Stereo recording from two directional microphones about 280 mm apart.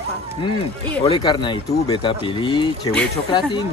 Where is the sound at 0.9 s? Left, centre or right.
Centre.